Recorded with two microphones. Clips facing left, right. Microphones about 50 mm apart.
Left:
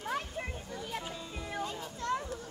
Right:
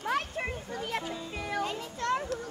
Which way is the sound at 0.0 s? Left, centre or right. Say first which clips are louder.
Right 5 dB; right.